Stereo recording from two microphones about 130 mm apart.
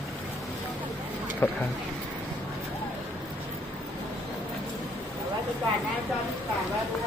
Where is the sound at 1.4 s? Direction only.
15° left (ahead or behind).